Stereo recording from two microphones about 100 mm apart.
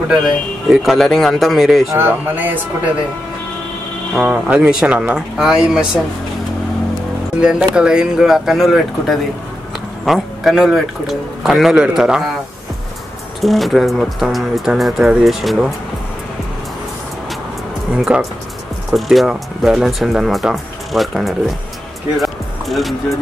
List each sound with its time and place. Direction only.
0.7 s speech: centre (ahead or behind)
1.9 s speech: 20° right (ahead or behind)
4.1 s speech: 10° right (ahead or behind)
7.3 s speech: 10° right (ahead or behind)
13.4 s speech: centre (ahead or behind)
17.9 s speech: 10° right (ahead or behind)
22.2 s music: centre (ahead or behind)